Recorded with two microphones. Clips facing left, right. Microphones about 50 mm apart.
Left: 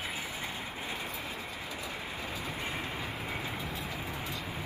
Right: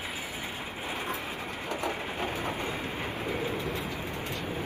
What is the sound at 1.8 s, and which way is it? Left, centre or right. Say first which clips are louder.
Train: right 7 dB; right.